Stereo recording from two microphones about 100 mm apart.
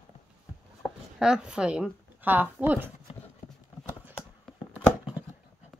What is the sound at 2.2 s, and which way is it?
Speech, 20° right (ahead or behind).